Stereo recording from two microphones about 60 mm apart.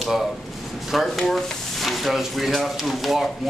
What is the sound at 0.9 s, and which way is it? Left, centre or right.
A man's voice, centre.